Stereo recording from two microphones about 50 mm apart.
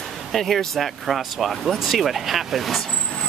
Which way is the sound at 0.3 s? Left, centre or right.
Centre.